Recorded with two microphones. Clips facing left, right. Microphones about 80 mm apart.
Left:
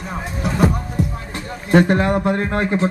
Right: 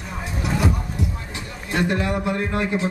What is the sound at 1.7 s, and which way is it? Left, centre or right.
Speech, left.